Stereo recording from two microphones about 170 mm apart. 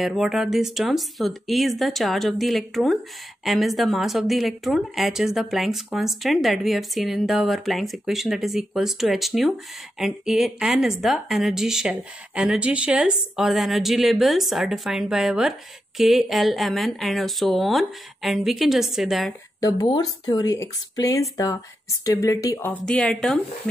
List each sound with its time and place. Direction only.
0.0 s a woman's voice: centre (ahead or behind)
19.6 s speech: 25° left (ahead or behind)
22.7 s a woman's voice: 5° left (ahead or behind)